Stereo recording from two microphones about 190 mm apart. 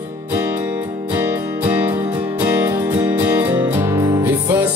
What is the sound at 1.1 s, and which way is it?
Music, 10° right (ahead or behind).